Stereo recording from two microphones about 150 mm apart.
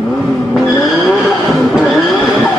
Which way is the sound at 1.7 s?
5° right (ahead or behind).